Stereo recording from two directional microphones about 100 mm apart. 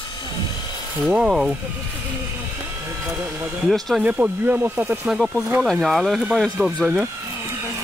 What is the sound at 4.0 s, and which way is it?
Speech, 15° right (ahead or behind).